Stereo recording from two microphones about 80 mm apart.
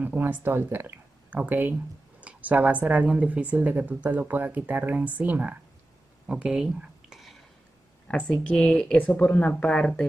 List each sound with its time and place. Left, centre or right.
0.0 s speech: right
6.2 s a sound: centre
8.1 s a woman's voice: centre
9.7 s speech: centre